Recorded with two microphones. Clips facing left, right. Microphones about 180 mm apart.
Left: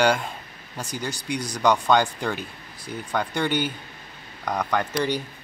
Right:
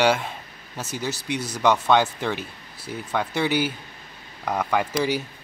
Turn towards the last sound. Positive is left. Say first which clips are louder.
# right 1 dB
turn(degrees=-10)  # may be behind; listen again after turning